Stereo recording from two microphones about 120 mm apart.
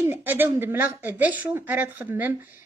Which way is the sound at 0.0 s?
20° right (ahead or behind).